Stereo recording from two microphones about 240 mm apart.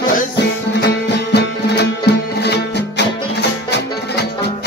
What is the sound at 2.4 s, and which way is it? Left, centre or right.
Music, left.